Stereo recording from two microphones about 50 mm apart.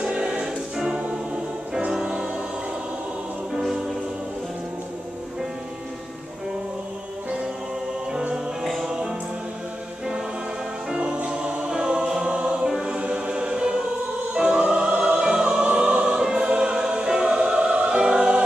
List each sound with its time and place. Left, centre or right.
0.0 s music: right
3.5 s music: centre
8.6 s music: centre
11.0 s music: right
12.6 s choir: centre
14.3 s music: right
15.1 s choir: centre